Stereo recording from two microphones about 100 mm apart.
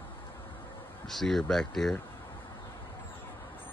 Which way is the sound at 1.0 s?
5° left (ahead or behind).